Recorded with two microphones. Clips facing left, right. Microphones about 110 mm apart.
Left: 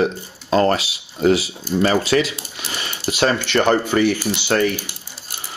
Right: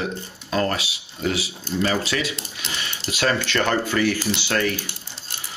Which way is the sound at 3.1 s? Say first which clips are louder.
Left 4 dB; 20° left (ahead or behind).